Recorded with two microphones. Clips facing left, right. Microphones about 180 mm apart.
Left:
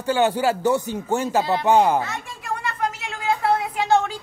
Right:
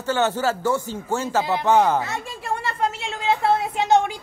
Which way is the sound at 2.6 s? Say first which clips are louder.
Right 1 dB; 25° right (ahead or behind).